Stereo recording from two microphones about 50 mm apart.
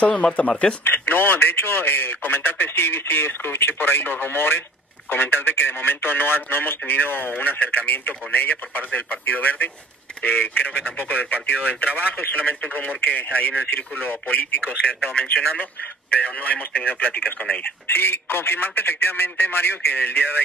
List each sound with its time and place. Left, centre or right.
0.0 s speech: left
0.8 s a man's voice: left
17.8 s speech: left